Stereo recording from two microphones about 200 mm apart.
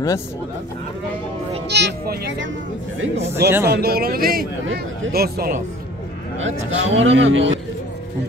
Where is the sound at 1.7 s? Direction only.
55° right (ahead or behind).